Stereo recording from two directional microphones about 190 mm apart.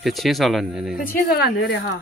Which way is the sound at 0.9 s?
50° left (ahead or behind).